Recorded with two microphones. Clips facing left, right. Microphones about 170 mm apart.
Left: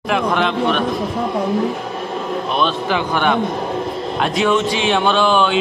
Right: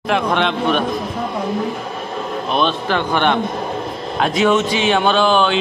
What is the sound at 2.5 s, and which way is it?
Speech, 5° left (ahead or behind).